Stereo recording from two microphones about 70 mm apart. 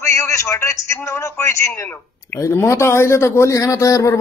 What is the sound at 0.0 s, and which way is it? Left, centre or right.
Speech, left.